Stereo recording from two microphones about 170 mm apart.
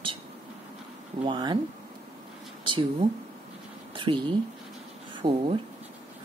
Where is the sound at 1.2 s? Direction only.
25° right (ahead or behind).